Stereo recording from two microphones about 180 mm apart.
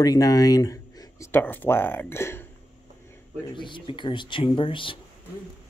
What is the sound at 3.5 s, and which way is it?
Speech, 25° left (ahead or behind).